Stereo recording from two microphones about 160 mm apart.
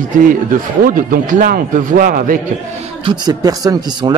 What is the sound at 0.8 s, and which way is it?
Speech, 60° right (ahead or behind).